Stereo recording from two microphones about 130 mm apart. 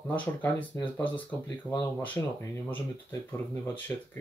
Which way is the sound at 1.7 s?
30° right (ahead or behind).